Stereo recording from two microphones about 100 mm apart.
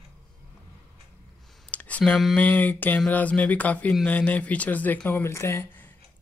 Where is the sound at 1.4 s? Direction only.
Centre (ahead or behind).